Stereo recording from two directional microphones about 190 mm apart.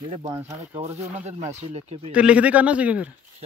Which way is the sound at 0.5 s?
35° right (ahead or behind).